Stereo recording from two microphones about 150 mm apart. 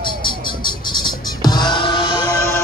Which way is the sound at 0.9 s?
30° left (ahead or behind).